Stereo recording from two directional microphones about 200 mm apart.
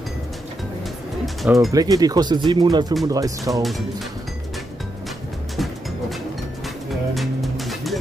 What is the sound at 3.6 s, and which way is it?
Speech, centre (ahead or behind).